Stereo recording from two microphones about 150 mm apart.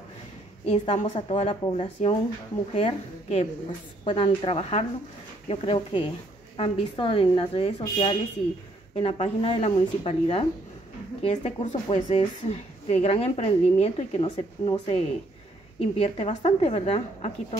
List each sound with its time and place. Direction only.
0.7 s a woman's voice: 50° left (ahead or behind)
14.3 s speech: 30° left (ahead or behind)
15.8 s a woman's voice: 45° left (ahead or behind)